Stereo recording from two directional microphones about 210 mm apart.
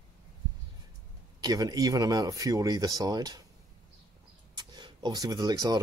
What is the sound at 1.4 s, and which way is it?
Speech, 15° right (ahead or behind).